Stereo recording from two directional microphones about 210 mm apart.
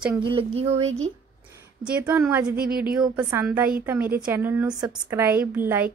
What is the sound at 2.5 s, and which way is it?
Speech, 45° right (ahead or behind).